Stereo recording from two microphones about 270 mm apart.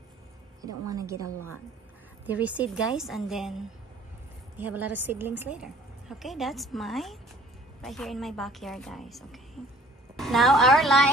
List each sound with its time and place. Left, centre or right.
0.6 s a woman's voice: centre
2.2 s a woman's voice: centre
4.6 s a woman's voice: right
5.0 s a woman's voice: centre